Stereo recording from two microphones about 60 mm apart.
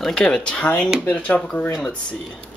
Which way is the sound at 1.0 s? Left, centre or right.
Left.